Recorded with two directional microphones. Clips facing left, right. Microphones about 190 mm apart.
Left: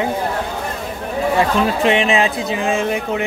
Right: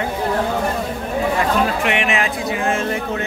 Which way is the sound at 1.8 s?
25° left (ahead or behind).